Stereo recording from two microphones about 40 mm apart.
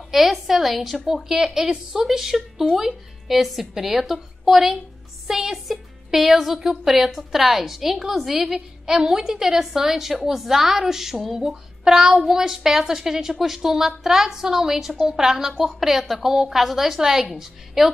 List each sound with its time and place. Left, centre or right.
0.1 s a woman's voice: centre
1.0 s a woman's voice: centre
2.0 s a woman's voice: centre
11.8 s a woman's voice: centre